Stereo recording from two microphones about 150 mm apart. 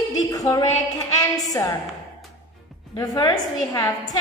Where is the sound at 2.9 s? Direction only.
25° left (ahead or behind).